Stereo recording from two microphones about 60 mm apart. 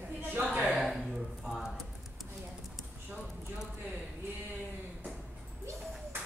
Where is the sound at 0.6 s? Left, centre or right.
Centre.